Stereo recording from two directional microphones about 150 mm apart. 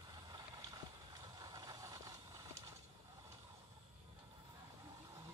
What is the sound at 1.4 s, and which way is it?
Vehicle, 25° right (ahead or behind).